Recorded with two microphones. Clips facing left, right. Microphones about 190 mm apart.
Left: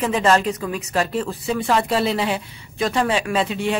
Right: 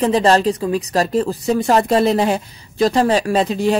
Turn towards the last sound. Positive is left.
turn(degrees=-40)  # may be behind; listen again after turning